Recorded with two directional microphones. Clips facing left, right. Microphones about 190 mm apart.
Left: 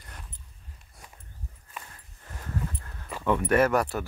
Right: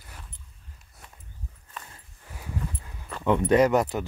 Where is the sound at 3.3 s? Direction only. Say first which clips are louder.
Right 3 dB; 20° right (ahead or behind).